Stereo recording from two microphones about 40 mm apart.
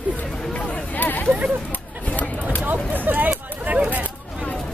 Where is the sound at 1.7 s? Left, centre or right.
Left.